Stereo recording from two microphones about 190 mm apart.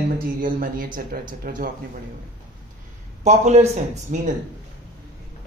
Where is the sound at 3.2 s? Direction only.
35° right (ahead or behind).